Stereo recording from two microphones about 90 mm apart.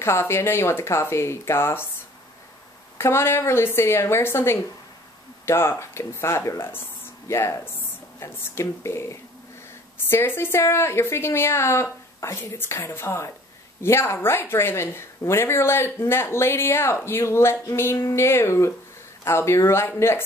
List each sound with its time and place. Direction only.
0.0 s a woman's voice: 30° left (ahead or behind)
3.0 s a woman's voice: 30° left (ahead or behind)